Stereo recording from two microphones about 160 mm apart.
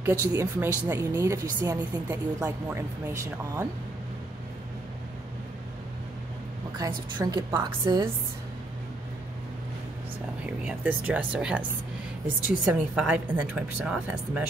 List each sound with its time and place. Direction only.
0.0 s a woman's voice: 15° right (ahead or behind)
6.8 s a woman's voice: 25° right (ahead or behind)
10.6 s a woman's voice: 10° right (ahead or behind)
12.6 s a woman's voice: 10° right (ahead or behind)